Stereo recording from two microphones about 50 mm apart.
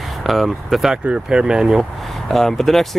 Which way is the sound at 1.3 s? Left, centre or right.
Centre.